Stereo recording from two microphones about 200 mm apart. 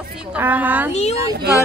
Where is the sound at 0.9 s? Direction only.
35° left (ahead or behind).